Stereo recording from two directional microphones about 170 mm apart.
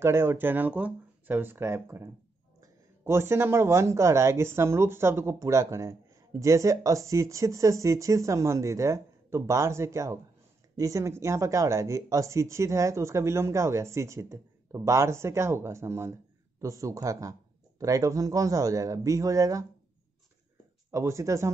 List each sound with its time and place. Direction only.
0.0 s a man's voice: 15° right (ahead or behind)
20.9 s a man's voice: 15° right (ahead or behind)